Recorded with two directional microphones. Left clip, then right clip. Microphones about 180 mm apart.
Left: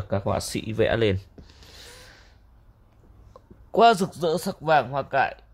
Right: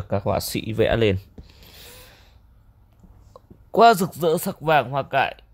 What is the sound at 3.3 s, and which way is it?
A man's voice, 30° right (ahead or behind).